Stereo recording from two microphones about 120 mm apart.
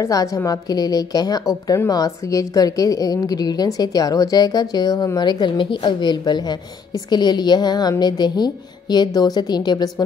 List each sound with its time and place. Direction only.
0.0 s a woman's voice: 30° left (ahead or behind)